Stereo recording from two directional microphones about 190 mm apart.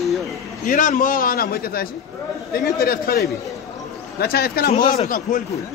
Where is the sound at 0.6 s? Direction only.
45° left (ahead or behind).